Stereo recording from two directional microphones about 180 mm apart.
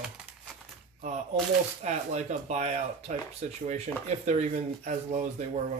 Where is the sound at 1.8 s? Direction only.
40° right (ahead or behind).